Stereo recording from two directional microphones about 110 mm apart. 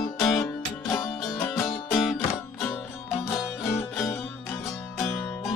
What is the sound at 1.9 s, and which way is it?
Music, 5° left (ahead or behind).